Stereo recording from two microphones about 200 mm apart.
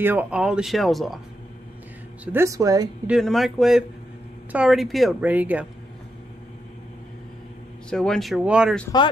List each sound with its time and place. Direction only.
0.0 s speech: 10° right (ahead or behind)
2.2 s speech: 15° right (ahead or behind)
3.1 s speech: centre (ahead or behind)
7.9 s speech: 5° left (ahead or behind)